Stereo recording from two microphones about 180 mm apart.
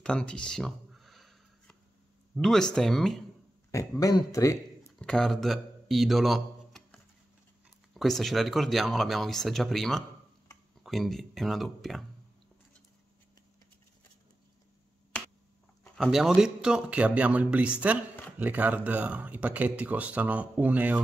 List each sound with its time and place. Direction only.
0.0 s a sound: 5° left (ahead or behind)
2.3 s speech: centre (ahead or behind)
4.0 s speech: 20° left (ahead or behind)
5.0 s a man's voice: centre (ahead or behind)
16.0 s speech: centre (ahead or behind)